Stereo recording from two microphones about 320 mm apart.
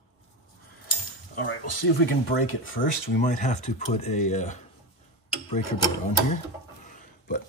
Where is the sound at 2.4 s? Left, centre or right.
Left.